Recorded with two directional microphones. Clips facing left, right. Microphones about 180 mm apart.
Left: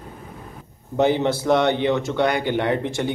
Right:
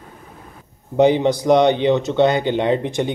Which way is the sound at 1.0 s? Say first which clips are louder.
Right 4 dB; 15° right (ahead or behind).